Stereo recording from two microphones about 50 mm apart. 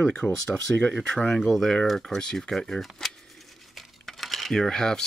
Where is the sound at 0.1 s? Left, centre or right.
Left; by 3.2 s centre.